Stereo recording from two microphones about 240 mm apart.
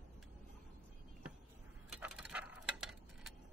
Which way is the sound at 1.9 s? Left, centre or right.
Centre.